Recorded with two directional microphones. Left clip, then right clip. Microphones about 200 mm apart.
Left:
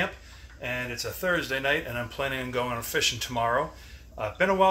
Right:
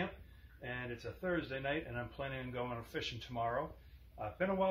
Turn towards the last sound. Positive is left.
turn(degrees=0)  # may be behind; listen again after turning